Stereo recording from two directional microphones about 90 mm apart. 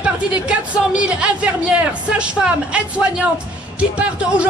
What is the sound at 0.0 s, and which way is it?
Speech, 10° right (ahead or behind).